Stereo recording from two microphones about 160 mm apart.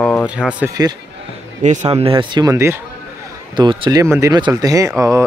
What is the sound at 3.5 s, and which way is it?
Speech, 30° right (ahead or behind).